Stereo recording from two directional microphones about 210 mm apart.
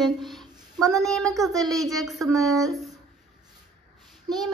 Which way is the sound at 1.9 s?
Centre (ahead or behind).